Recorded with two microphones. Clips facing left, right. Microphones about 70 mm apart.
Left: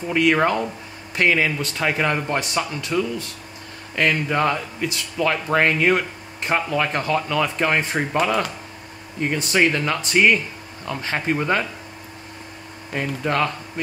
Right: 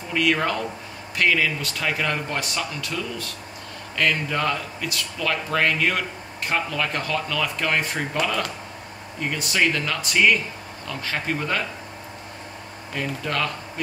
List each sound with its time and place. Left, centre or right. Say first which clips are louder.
0.1 s speech: left 4 dB; left
9.3 s speech: left 3 dB; left
12.9 s speech: left 4 dB; left